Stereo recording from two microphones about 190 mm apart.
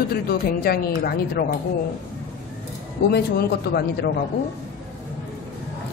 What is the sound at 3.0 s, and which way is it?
Speech, 55° left (ahead or behind).